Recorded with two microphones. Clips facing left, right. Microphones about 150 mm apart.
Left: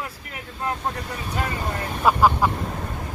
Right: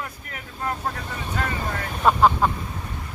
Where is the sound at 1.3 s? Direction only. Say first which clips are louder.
Left 1 dB; 10° left (ahead or behind).